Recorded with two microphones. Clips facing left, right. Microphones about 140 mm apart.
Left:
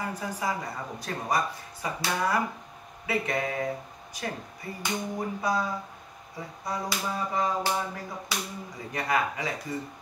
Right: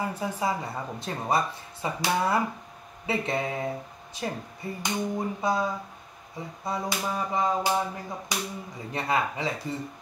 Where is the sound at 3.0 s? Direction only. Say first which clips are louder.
Right 1 dB; 25° right (ahead or behind).